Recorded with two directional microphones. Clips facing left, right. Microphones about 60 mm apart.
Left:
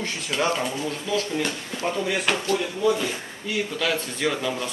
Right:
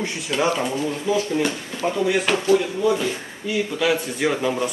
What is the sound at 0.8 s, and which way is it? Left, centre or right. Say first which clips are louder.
Speech: right 4 dB; centre.